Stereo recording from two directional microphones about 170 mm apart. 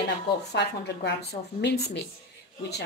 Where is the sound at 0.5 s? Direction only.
80° left.